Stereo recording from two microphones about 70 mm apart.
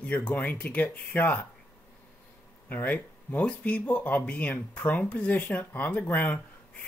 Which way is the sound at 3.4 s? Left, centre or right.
Centre.